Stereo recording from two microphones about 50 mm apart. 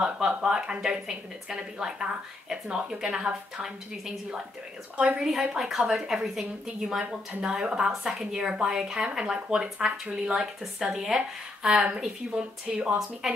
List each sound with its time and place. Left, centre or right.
0.0 s a woman's voice: centre
4.9 s a woman's voice: right
5.2 s a woman's voice: centre
7.4 s a woman's voice: centre
13.2 s a woman's voice: centre